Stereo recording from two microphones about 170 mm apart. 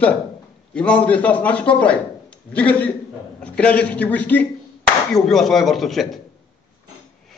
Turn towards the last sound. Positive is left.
turn(degrees=0)  # may be behind; listen again after turning